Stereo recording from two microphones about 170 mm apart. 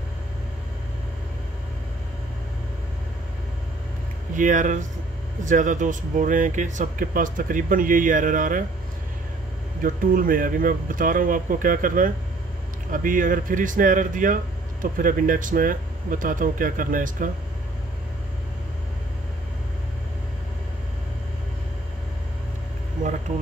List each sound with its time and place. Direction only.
4.4 s speech: 50° right (ahead or behind)
9.8 s speech: 55° right (ahead or behind)
23.0 s a sound: 50° right (ahead or behind)